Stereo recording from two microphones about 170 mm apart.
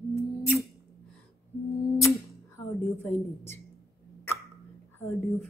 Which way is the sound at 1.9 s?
15° left (ahead or behind).